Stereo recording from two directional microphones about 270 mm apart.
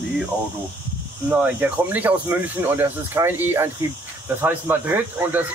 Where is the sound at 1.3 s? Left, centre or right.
Centre.